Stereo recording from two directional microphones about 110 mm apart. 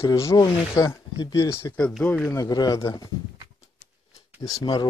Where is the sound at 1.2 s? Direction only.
40° left (ahead or behind).